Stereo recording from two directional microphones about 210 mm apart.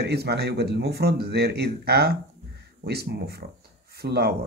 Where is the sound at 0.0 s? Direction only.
50° right (ahead or behind).